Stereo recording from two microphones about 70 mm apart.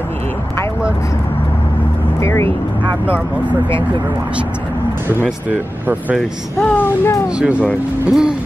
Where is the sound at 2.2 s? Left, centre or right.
Left.